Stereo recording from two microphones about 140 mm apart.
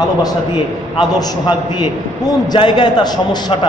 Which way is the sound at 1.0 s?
30° left (ahead or behind).